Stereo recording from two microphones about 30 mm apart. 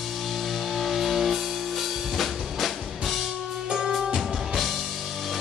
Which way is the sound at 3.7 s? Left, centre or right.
Centre.